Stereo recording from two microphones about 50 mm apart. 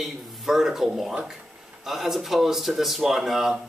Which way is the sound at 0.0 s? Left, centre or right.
Centre.